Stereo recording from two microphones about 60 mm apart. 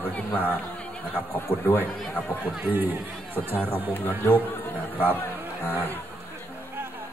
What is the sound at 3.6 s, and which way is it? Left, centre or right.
Speech, left.